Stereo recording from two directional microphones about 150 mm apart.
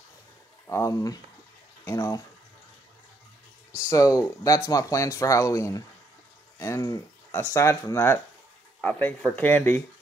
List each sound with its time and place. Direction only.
0.7 s speech: 20° left (ahead or behind)
3.9 s speech: 20° left (ahead or behind)